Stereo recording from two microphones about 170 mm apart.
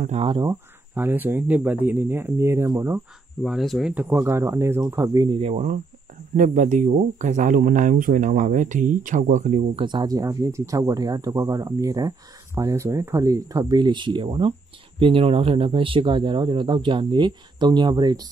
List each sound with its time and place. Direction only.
0.0 s speech: 40° right (ahead or behind)
0.3 s speech: 25° right (ahead or behind)
0.9 s speech: 10° right (ahead or behind)
3.4 s speech: centre (ahead or behind); by 5.4 s 20° right (ahead or behind)
5.4 s speech: 40° right (ahead or behind)
9.8 s speech: 25° right (ahead or behind)